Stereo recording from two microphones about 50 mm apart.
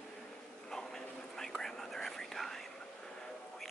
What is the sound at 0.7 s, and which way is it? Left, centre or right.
Whispering, centre.